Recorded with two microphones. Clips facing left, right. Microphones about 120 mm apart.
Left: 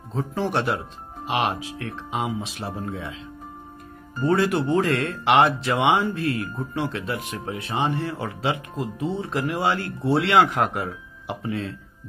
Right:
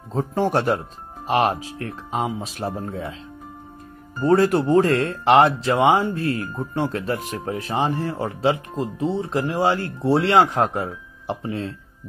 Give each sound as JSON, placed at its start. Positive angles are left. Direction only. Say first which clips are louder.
{"t": 0.1, "sound": "speech", "louder": "right 4 dB", "side_deg": -40}
{"t": 4.2, "sound": "speech", "louder": "right 4 dB", "side_deg": -35}